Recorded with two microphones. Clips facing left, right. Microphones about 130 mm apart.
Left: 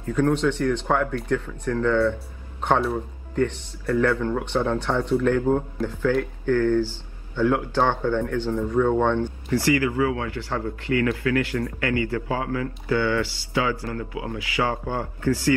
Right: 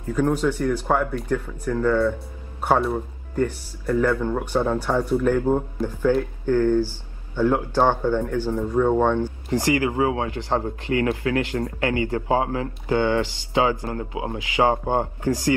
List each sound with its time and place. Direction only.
0.0 s speech: 10° right (ahead or behind)